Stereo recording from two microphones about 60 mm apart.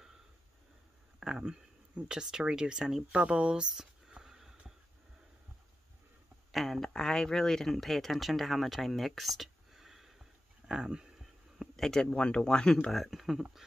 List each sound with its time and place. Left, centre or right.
1.4 s speech: centre
6.5 s speech: centre
10.7 s a sound: centre
11.7 s speech: centre
12.9 s speech: centre